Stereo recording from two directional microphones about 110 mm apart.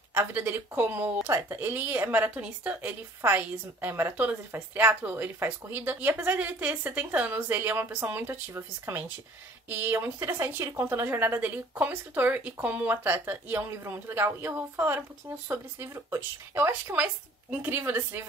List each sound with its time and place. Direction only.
0.1 s a woman's voice: 20° right (ahead or behind)